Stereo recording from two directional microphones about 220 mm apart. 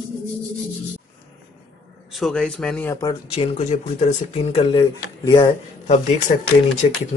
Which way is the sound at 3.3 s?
30° left (ahead or behind).